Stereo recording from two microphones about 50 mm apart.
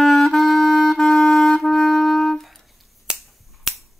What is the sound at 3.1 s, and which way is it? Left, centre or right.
Finger snapping, centre.